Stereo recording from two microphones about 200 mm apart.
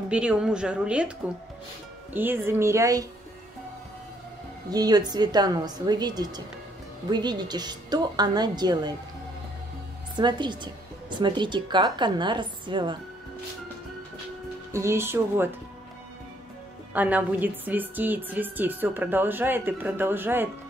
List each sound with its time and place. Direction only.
0.1 s a woman's voice: 5° right (ahead or behind)
2.1 s a woman's voice: 10° right (ahead or behind)
4.6 s a woman's voice: 20° right (ahead or behind)
10.1 s a woman's voice: 20° right (ahead or behind)
14.7 s a woman's voice: 15° right (ahead or behind)
16.9 s a woman's voice: 10° right (ahead or behind)